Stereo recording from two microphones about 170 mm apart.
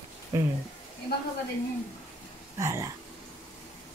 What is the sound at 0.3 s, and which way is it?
Speech, 15° right (ahead or behind).